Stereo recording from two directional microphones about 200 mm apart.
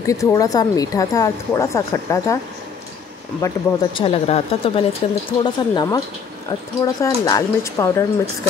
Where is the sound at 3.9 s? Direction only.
30° left (ahead or behind).